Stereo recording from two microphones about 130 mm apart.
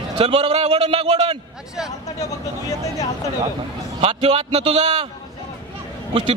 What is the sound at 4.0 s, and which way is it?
A man's voice, 45° right (ahead or behind).